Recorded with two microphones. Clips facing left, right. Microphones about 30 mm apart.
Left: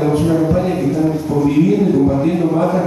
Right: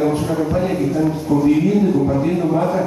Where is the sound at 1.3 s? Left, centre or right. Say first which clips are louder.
Even; centre.